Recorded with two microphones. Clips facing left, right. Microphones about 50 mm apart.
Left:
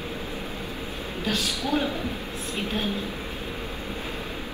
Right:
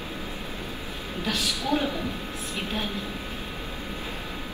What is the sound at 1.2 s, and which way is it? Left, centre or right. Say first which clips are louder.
A woman's voice: left 1 dB; left.